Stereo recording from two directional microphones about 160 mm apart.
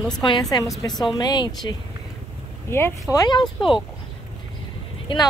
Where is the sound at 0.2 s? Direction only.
25° left (ahead or behind).